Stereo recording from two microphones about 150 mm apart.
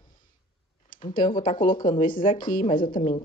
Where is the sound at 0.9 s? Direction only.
65° left (ahead or behind).